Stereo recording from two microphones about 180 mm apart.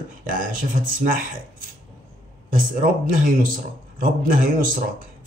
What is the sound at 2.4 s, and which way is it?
Speech, 50° right (ahead or behind).